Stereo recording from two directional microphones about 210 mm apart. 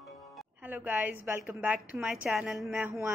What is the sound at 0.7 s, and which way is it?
A woman's voice, 10° right (ahead or behind).